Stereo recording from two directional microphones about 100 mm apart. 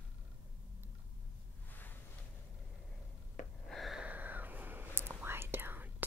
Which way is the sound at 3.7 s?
Centre (ahead or behind).